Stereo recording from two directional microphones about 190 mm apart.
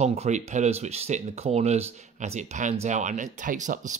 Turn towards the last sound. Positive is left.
turn(degrees=-40)  # may be behind; listen again after turning